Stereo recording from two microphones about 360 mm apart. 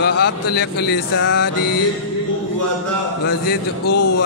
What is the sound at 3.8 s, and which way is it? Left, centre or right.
Speech, left.